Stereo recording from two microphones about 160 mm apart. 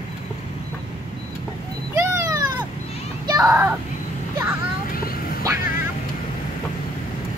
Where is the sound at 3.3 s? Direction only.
20° right (ahead or behind).